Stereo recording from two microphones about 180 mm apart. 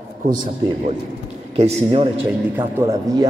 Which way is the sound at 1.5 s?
30° right (ahead or behind).